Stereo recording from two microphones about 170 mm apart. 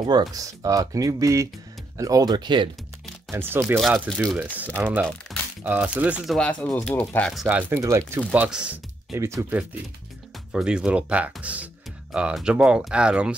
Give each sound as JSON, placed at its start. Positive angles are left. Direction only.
{"t": 0.0, "sound": "speech", "side_deg": -20}
{"t": 3.3, "sound": "speech", "side_deg": -15}
{"t": 6.6, "sound": "speech", "side_deg": 5}
{"t": 7.4, "sound": "speech", "side_deg": -10}
{"t": 9.1, "sound": "speech", "side_deg": -15}
{"t": 10.5, "sound": "speech", "side_deg": -5}